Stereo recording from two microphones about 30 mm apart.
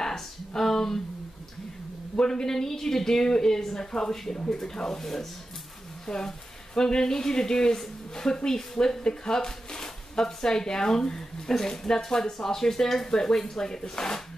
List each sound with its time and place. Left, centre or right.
0.6 s a sound: centre
2.1 s speech: left
3.8 s speech: left
4.1 s speech: centre
6.1 s speech: left